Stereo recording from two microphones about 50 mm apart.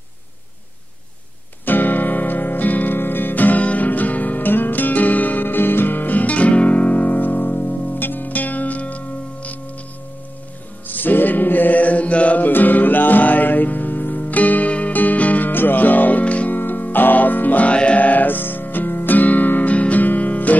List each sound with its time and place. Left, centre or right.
1.7 s music: left
10.9 s music: left